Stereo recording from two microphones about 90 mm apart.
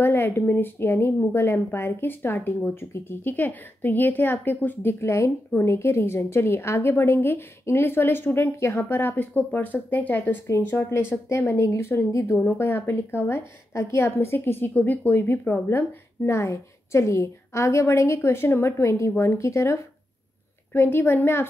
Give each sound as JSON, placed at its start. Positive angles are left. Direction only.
{"t": 0.0, "sound": "a woman's voice", "side_deg": 25}